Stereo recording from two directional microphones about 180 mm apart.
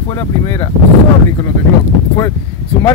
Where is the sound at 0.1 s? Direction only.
20° left (ahead or behind).